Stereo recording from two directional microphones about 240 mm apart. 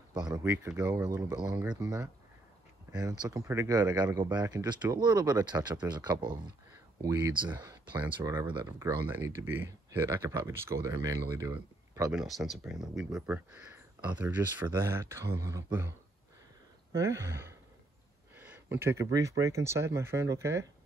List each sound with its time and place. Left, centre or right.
0.1 s speech: centre
16.9 s speech: centre
18.3 s a sound: centre
19.4 s speech: centre